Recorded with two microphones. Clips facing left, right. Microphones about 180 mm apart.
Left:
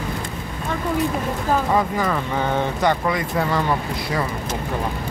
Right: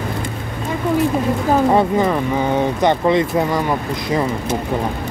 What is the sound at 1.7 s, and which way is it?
Speech, 25° right (ahead or behind).